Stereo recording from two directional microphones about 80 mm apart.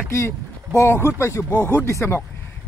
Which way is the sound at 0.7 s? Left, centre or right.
Left.